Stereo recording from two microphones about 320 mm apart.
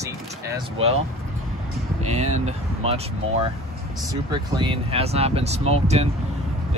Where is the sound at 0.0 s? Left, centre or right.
Centre.